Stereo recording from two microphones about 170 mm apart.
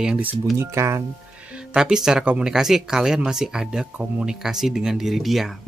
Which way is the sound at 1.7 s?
5° right (ahead or behind).